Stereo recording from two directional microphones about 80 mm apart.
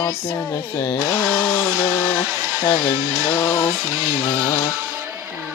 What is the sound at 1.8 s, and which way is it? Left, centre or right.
Speech, left.